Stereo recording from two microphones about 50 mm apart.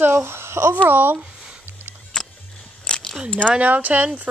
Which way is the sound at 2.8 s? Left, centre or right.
Centre.